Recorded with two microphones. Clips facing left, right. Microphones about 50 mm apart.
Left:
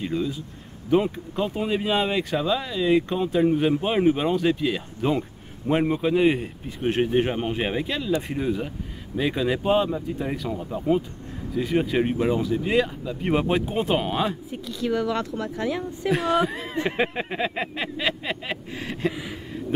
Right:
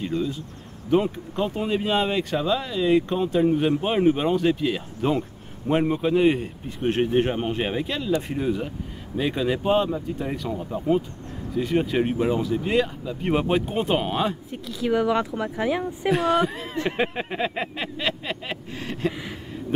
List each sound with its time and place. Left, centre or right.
0.0 s speech: centre
14.9 s speech: centre
16.1 s speech: centre